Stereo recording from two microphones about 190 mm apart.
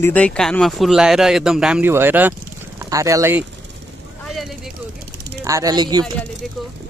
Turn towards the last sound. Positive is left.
turn(degrees=0)  # may be behind; listen again after turning